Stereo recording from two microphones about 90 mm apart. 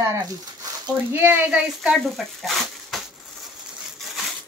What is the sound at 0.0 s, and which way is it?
Speech, 35° right (ahead or behind).